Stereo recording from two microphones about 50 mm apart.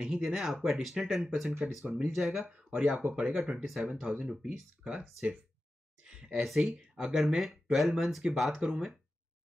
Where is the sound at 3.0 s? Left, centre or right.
Right.